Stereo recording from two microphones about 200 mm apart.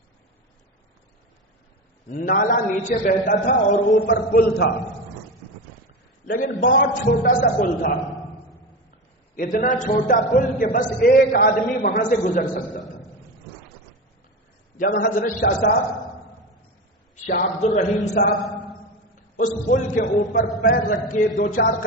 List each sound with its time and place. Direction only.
2.0 s a man's voice: 40° left (ahead or behind)
3.9 s a man's voice: 65° left (ahead or behind)
4.3 s speech: 50° left (ahead or behind)
6.2 s a man's voice: 45° left (ahead or behind)
9.3 s speech: 45° left (ahead or behind)
15.0 s speech: 45° left (ahead or behind)
17.3 s a man's voice: 35° left (ahead or behind)